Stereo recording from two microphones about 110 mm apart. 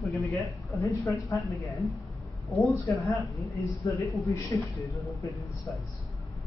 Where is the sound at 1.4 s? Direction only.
Centre (ahead or behind).